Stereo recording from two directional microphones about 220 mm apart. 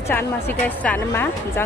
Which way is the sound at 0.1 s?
10° left (ahead or behind).